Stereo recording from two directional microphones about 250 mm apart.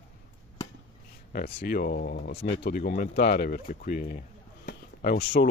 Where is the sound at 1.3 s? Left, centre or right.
Left.